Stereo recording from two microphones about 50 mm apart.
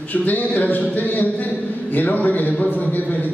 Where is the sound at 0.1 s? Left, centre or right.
Left.